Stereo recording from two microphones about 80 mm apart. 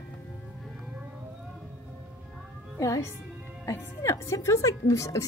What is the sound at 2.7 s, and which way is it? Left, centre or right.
A woman's voice, left.